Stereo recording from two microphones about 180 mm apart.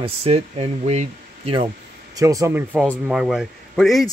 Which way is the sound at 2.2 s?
20° right (ahead or behind).